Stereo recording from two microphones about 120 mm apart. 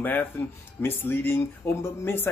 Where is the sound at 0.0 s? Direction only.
15° left (ahead or behind).